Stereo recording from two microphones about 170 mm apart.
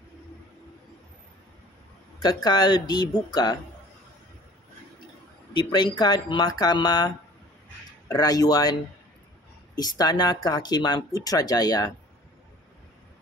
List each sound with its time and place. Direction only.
2.1 s speech: 25° left (ahead or behind)
5.5 s speech: 25° left (ahead or behind)
9.8 s speech: 25° left (ahead or behind)